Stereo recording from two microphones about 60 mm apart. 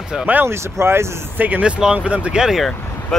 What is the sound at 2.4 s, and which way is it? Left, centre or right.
Speech, centre.